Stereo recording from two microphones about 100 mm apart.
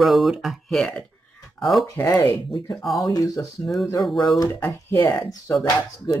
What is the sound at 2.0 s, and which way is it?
Speech, 40° left (ahead or behind).